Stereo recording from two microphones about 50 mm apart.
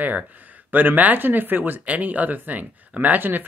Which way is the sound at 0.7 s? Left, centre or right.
Right.